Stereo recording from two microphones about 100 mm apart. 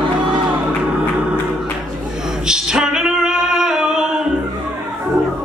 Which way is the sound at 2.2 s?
5° right (ahead or behind).